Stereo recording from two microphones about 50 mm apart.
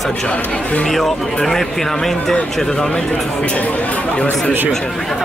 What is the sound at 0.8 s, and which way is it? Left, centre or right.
Speech, centre.